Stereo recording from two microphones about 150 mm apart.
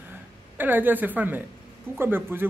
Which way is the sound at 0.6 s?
15° right (ahead or behind).